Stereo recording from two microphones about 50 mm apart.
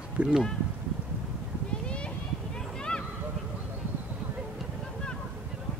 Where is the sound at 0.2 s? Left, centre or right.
Right.